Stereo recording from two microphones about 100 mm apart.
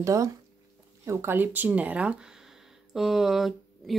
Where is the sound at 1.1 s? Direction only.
20° right (ahead or behind).